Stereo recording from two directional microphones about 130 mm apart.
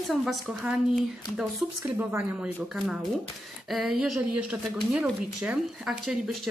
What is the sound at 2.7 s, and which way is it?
Speech, 5° right (ahead or behind).